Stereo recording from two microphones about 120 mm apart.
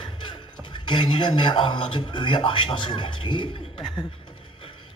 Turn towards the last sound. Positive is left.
turn(degrees=40)  # may be behind; listen again after turning